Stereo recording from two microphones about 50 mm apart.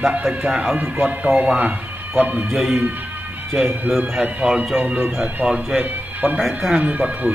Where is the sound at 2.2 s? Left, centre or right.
Right.